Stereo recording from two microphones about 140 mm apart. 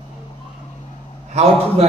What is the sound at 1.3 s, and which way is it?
Speech, 45° right (ahead or behind).